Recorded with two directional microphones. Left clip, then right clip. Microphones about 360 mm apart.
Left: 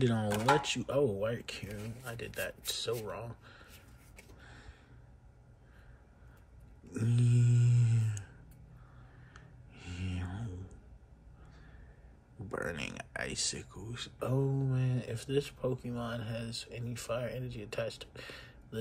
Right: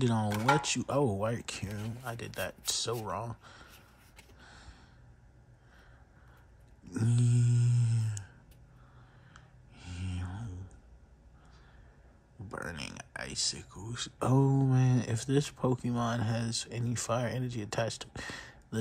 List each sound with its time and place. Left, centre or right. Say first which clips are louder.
0.0 s speech: right 1 dB; centre
4.4 s gasp: right 3 dB; centre
6.9 s speech: right 1 dB; centre
9.3 s a sound: left 1 dB; centre
12.4 s speech: left 2 dB; centre